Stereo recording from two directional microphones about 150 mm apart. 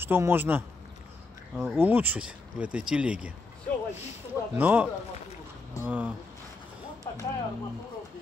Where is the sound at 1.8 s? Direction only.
10° right (ahead or behind).